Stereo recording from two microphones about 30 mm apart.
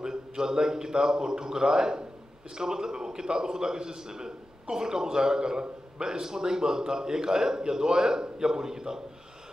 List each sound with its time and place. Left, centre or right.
0.0 s a man's voice: right